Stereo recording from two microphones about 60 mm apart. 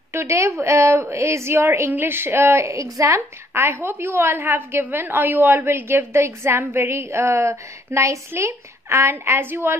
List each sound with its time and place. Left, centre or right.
0.1 s a woman's voice: right